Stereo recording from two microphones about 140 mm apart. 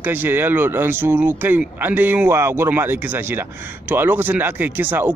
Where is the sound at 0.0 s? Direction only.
15° right (ahead or behind).